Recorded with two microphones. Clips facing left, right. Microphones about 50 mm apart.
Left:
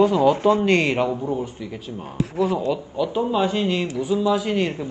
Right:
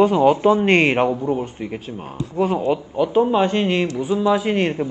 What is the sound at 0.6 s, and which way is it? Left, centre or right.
A man's voice, right.